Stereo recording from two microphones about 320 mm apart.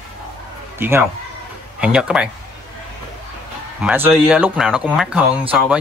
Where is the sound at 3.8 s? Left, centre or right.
Centre.